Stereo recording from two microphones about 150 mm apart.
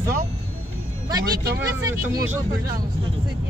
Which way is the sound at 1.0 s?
25° right (ahead or behind).